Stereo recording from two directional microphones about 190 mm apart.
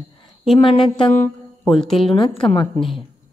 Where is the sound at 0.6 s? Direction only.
25° left (ahead or behind).